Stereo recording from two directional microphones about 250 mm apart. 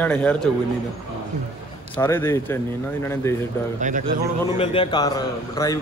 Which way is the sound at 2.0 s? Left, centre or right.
Centre.